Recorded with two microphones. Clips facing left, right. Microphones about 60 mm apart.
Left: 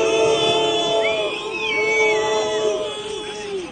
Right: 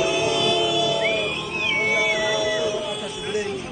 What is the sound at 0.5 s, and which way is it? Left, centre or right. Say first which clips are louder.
Music: left 3 dB; centre.